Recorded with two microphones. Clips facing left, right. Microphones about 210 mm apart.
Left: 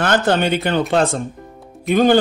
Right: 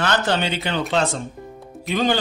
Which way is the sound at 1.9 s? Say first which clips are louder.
Left 8 dB; 50° left (ahead or behind).